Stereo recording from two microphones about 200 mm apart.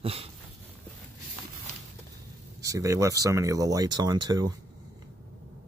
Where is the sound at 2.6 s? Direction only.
15° right (ahead or behind).